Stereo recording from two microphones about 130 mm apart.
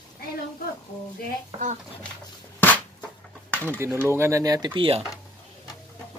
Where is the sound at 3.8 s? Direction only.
20° right (ahead or behind).